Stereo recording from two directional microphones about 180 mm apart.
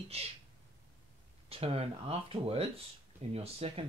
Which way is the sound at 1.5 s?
35° right (ahead or behind).